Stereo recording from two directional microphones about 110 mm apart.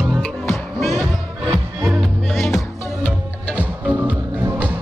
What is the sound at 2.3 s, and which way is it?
Music, 5° left (ahead or behind).